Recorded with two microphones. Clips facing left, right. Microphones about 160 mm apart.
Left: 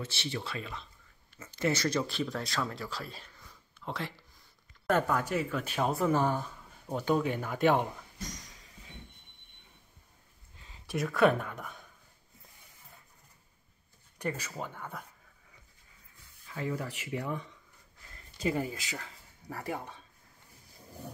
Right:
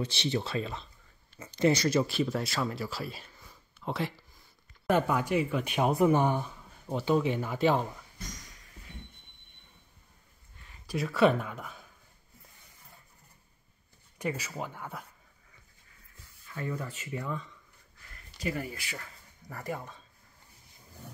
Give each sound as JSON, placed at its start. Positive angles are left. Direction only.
{"t": 0.0, "sound": "speech", "side_deg": -20}
{"t": 1.4, "sound": "speech", "side_deg": -15}
{"t": 6.9, "sound": "speech", "side_deg": 0}
{"t": 10.9, "sound": "speech", "side_deg": 0}
{"t": 14.1, "sound": "speech", "side_deg": -10}
{"t": 16.5, "sound": "speech", "side_deg": 20}